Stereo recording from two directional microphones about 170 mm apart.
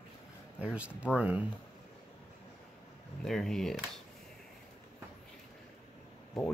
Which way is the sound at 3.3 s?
5° left (ahead or behind).